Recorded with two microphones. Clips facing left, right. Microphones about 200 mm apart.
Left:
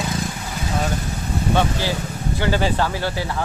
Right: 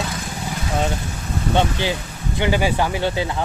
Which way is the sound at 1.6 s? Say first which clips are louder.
Right 1 dB; 20° right (ahead or behind).